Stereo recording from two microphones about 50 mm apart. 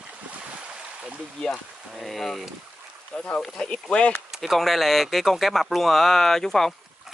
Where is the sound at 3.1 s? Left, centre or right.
Left.